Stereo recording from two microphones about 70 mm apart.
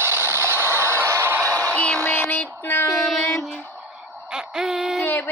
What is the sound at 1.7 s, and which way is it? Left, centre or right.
Music, centre.